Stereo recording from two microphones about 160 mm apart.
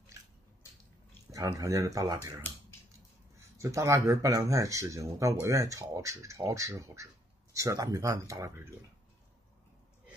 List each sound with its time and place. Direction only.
1.3 s speech: 20° right (ahead or behind)
3.5 s speech: 20° right (ahead or behind)